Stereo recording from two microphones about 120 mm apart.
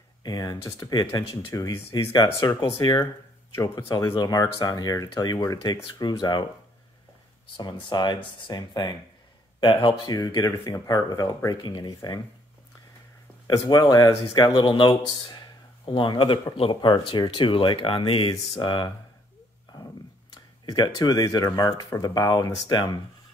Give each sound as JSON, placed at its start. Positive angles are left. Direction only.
{"t": 0.2, "sound": "speech", "side_deg": 30}
{"t": 7.9, "sound": "speech", "side_deg": 40}
{"t": 13.5, "sound": "speech", "side_deg": 35}
{"t": 20.6, "sound": "speech", "side_deg": 35}